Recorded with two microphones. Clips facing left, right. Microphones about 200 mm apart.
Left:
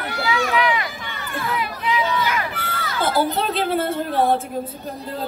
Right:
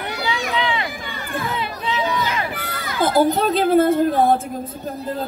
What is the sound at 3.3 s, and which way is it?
Speech, 45° right (ahead or behind).